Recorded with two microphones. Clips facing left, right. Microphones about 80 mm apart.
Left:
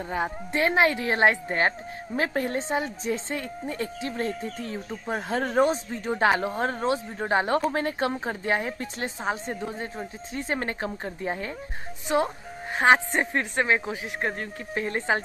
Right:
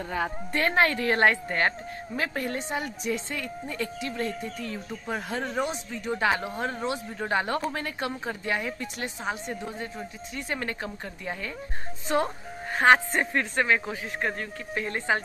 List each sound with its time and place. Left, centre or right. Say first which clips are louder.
0.1 s a woman's voice: left 1 dB; left
2.1 s a woman's voice: left 4 dB; left
5.4 s speech: left 7 dB; left
12.7 s a woman's voice: even; centre